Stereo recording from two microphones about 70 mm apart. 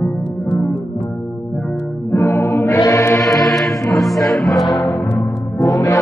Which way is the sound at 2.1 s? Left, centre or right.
Left.